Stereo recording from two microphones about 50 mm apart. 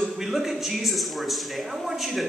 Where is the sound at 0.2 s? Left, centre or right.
Centre.